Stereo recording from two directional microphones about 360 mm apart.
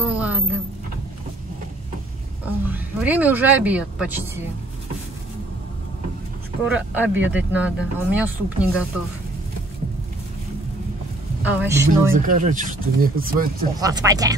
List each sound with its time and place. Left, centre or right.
0.0 s a sound: centre
2.4 s speech: centre
6.7 s speech: centre
11.4 s speech: centre
12.3 s speech: right
13.7 s speech: centre